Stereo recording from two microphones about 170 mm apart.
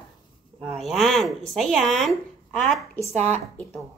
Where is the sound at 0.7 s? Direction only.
Centre (ahead or behind).